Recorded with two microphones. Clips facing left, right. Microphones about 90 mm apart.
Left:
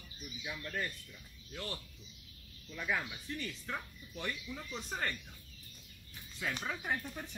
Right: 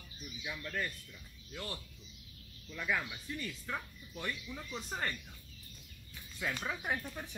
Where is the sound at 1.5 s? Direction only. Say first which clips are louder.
Even; centre (ahead or behind).